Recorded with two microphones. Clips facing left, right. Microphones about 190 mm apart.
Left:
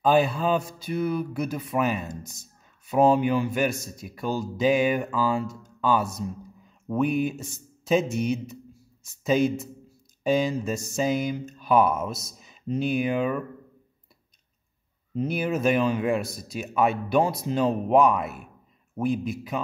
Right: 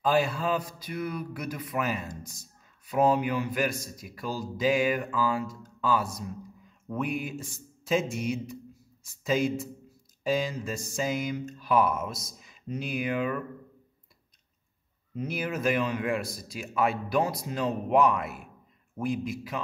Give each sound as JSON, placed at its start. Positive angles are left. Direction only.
{"t": 0.1, "sound": "a man's voice", "side_deg": 20}
{"t": 15.1, "sound": "a man's voice", "side_deg": 25}